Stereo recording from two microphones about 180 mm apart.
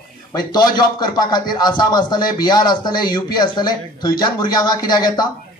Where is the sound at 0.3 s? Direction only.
20° left (ahead or behind).